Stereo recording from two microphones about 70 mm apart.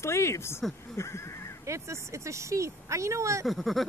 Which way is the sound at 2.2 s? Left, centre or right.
Right.